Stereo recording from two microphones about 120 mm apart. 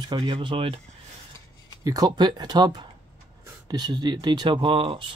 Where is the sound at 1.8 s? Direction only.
30° right (ahead or behind).